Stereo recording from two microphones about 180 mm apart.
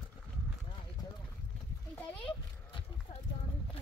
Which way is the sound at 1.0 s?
15° left (ahead or behind).